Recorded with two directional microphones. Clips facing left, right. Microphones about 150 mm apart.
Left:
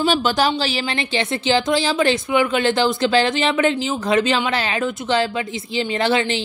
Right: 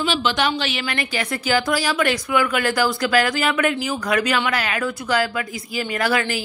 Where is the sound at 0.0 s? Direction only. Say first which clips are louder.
Left 3 dB; 40° left (ahead or behind).